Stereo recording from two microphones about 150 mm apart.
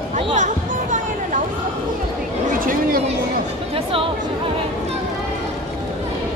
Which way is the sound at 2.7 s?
70° right (ahead or behind).